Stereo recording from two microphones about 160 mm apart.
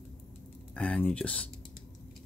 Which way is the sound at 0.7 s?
5° left (ahead or behind).